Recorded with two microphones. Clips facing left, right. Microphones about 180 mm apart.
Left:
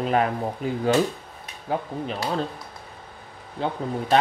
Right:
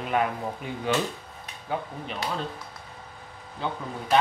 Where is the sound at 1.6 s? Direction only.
35° left (ahead or behind).